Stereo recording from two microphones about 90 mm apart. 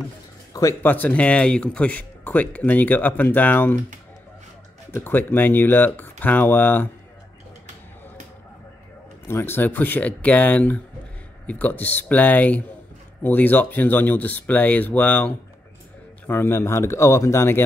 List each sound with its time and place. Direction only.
0.5 s a sound: 40° left (ahead or behind)
0.8 s speech: 20° left (ahead or behind)
4.9 s speech: 20° left (ahead or behind)
9.3 s speech: 25° left (ahead or behind)